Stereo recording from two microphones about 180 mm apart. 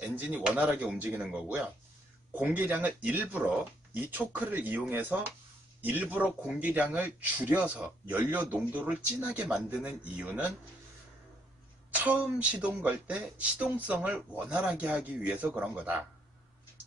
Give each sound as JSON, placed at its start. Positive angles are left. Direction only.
{"t": 0.0, "sound": "speech", "side_deg": -10}
{"t": 11.9, "sound": "speech", "side_deg": -10}